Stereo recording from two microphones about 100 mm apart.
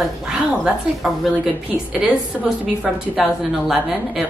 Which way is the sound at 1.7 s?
10° right (ahead or behind).